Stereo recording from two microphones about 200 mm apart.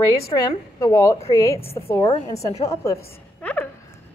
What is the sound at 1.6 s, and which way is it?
Speech, 30° left (ahead or behind).